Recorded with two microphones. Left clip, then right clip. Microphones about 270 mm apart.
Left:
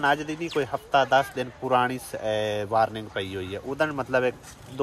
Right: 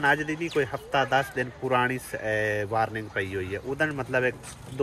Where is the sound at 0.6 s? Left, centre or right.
Centre.